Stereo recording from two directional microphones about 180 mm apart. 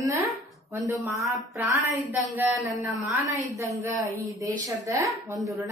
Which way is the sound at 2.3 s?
15° right (ahead or behind).